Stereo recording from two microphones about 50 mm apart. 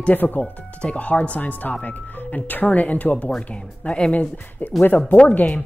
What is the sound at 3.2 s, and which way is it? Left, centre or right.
Speech, centre.